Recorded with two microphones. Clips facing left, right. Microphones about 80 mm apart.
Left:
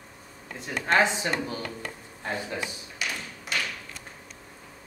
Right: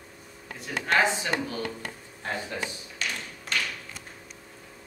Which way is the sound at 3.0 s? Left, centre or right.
Centre.